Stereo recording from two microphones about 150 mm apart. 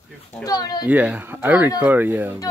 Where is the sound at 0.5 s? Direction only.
25° left (ahead or behind).